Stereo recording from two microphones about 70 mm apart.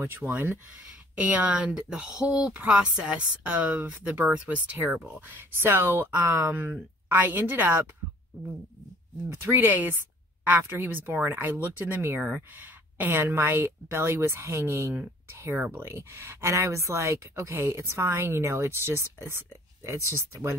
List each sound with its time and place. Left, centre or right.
0.0 s a woman's voice: right
0.7 s speech: centre
9.4 s a woman's voice: right